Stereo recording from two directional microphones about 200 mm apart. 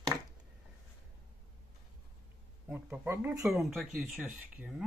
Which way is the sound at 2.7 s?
5° right (ahead or behind).